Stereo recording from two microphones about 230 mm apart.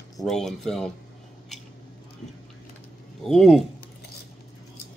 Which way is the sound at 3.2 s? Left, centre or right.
Centre.